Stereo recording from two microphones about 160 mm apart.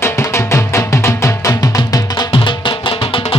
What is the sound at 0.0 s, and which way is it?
Music, 15° left (ahead or behind).